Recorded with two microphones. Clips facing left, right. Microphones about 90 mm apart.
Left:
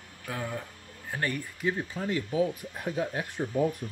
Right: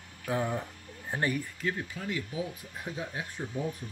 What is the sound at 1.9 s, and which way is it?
Speech, 40° left (ahead or behind).